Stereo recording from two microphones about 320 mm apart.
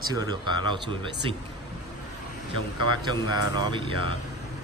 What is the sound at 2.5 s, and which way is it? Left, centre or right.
Speech, left.